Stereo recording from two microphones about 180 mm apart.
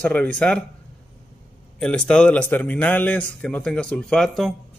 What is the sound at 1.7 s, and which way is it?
Speech, 5° left (ahead or behind).